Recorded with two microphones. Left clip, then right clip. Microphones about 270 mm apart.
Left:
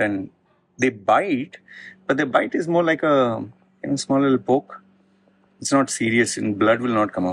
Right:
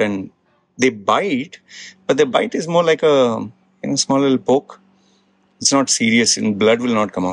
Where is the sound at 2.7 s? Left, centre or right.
Right.